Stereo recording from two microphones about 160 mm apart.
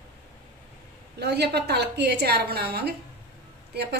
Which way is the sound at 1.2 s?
90° right.